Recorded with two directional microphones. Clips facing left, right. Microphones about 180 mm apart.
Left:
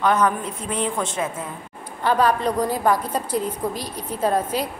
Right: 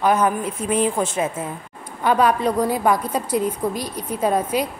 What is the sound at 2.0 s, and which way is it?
A woman's voice, 10° right (ahead or behind).